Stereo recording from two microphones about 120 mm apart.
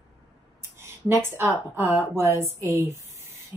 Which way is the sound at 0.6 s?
25° right (ahead or behind).